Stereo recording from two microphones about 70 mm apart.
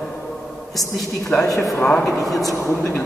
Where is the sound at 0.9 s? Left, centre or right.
Centre.